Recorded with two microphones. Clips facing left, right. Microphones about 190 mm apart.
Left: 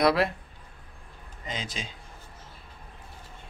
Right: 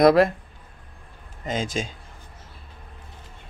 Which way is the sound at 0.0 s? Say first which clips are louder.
Right 7 dB; 45° right (ahead or behind).